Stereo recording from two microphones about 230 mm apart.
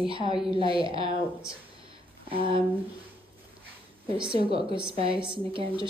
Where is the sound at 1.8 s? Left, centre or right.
Right.